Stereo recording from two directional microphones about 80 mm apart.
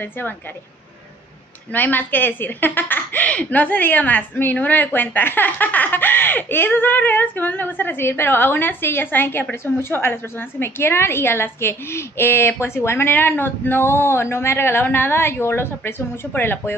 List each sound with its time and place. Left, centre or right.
1.7 s speech: left